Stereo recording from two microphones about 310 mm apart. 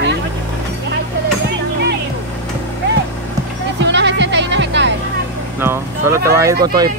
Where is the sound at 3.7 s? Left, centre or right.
Right.